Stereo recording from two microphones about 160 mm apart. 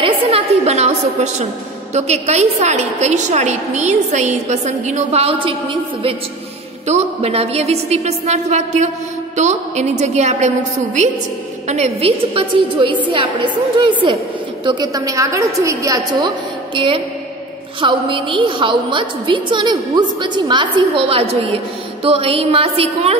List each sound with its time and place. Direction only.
0.0 s a sound: 40° right (ahead or behind)
2.0 s a woman's voice: 45° right (ahead or behind); by 16.3 s 20° right (ahead or behind)
16.7 s a woman's voice: 35° right (ahead or behind)